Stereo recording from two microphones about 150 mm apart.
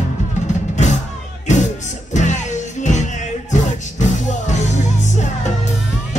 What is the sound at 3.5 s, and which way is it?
Music, 55° left (ahead or behind).